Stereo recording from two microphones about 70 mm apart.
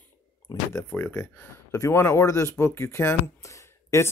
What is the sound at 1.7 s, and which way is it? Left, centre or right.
A man's voice, left.